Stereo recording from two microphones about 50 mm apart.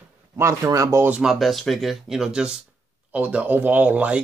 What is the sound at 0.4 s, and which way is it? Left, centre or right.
Speech, right.